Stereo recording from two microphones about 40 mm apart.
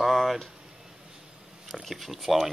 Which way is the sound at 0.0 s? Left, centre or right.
Centre.